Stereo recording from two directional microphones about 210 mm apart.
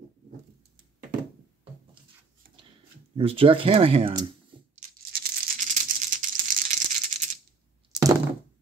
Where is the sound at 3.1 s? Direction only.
25° right (ahead or behind).